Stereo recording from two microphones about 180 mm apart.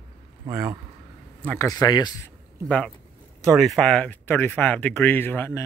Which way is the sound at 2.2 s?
5° left (ahead or behind).